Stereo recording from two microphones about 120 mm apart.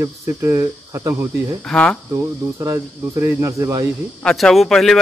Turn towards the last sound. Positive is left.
turn(degrees=5)  # may be behind; listen again after turning